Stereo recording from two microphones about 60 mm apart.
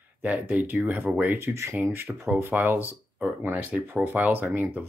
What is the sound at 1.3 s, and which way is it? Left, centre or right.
Speech, right.